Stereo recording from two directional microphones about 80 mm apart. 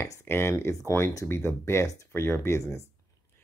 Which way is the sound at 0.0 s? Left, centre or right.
Left.